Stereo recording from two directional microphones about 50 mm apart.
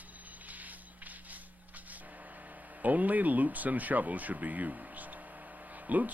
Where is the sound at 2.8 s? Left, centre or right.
Right.